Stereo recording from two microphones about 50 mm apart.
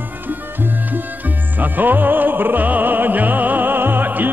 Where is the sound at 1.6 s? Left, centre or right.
Right.